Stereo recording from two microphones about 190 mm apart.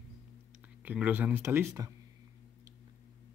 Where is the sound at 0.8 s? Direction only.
10° right (ahead or behind).